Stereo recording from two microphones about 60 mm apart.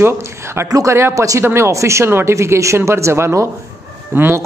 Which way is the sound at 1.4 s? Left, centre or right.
Right.